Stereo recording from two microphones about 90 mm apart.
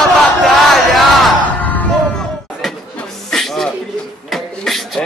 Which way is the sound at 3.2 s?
5° left (ahead or behind).